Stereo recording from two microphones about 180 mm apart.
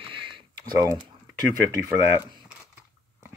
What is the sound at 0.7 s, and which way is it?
Speech, 20° right (ahead or behind).